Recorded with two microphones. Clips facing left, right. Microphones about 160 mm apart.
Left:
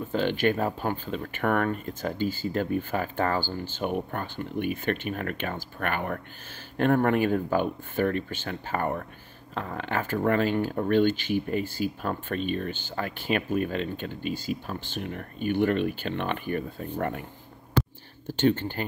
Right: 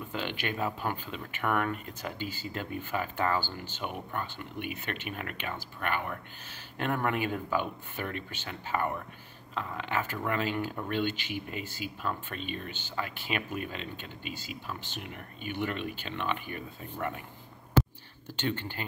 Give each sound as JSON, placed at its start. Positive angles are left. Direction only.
{"t": 0.1, "sound": "speech", "side_deg": 40}
{"t": 3.2, "sound": "speech", "side_deg": 35}
{"t": 3.8, "sound": "speech", "side_deg": 45}
{"t": 18.4, "sound": "speech", "side_deg": 45}